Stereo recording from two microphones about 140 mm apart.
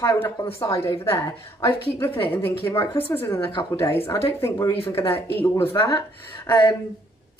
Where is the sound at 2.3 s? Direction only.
20° left (ahead or behind).